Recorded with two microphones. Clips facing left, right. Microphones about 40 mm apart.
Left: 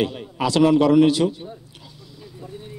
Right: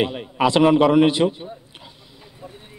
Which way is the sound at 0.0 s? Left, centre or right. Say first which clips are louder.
Right 3 dB; right.